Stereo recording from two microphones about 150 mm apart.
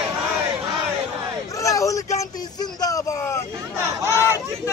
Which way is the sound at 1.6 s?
20° left (ahead or behind).